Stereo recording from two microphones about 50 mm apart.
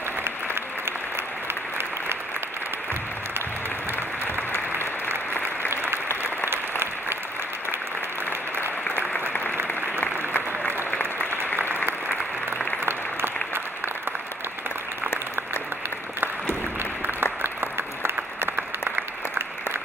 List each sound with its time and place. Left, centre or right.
4.5 s applause: right
9.9 s applause: left
11.5 s applause: right
17.0 s applause: right